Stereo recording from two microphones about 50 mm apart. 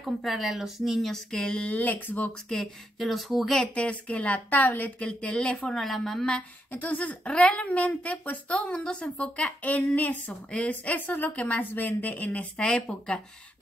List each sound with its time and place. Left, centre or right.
0.2 s speech: centre
1.7 s a woman's voice: left
2.5 s speech: centre
3.5 s a woman's voice: left
5.8 s speech: centre
6.7 s a woman's voice: left
11.6 s a woman's voice: left